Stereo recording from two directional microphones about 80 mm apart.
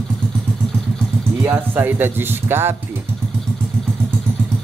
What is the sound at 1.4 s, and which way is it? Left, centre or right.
Speech, right.